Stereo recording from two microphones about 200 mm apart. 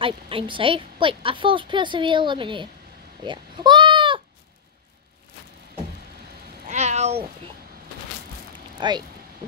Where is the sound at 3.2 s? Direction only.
20° right (ahead or behind).